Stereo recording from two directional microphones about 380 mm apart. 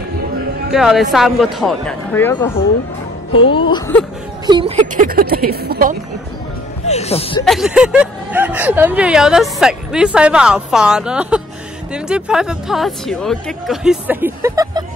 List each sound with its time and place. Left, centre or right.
0.7 s speech: centre
3.4 s music: centre
4.5 s speech: centre
6.9 s music: centre
7.4 s speech: centre